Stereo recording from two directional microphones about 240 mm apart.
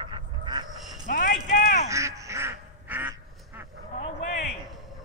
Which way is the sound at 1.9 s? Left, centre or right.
Centre.